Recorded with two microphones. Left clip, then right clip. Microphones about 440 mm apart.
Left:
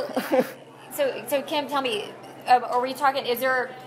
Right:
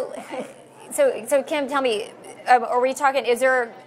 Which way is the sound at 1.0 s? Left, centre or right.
Right.